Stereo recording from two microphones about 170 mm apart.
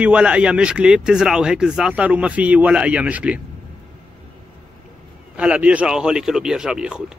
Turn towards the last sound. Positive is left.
turn(degrees=-5)  # may be behind; listen again after turning